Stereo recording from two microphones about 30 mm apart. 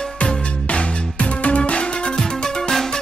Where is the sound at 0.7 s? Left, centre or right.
Left.